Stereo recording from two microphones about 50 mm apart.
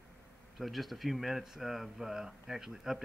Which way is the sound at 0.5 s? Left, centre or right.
Centre.